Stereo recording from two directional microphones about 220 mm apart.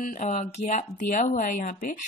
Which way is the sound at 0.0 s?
35° left (ahead or behind).